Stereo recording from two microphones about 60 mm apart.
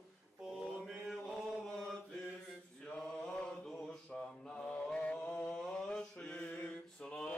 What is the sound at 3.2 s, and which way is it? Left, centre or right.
Chant, centre.